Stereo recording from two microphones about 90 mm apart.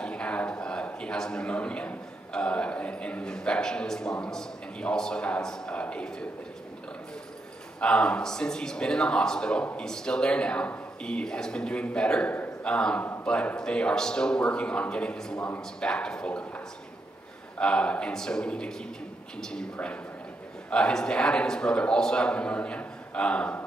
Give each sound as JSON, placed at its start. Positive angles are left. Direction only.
{"t": 0.0, "sound": "a man's voice", "side_deg": 10}
{"t": 7.8, "sound": "a man's voice", "side_deg": 10}